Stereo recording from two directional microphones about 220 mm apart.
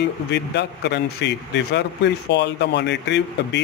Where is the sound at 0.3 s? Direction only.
50° left (ahead or behind).